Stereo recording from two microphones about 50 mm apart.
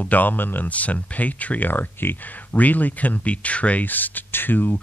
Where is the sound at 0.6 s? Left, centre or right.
Left.